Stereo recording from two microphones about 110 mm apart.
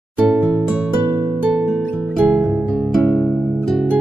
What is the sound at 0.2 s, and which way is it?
Music, 15° right (ahead or behind).